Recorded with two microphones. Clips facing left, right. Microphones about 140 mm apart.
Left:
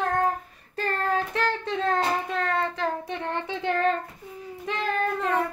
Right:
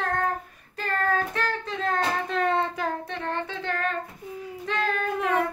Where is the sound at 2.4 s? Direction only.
20° right (ahead or behind).